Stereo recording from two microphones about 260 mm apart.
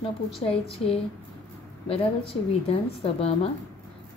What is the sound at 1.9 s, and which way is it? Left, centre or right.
Speech, left.